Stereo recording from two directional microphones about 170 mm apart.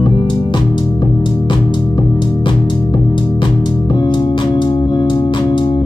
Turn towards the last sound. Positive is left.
turn(degrees=25)  # may be behind; listen again after turning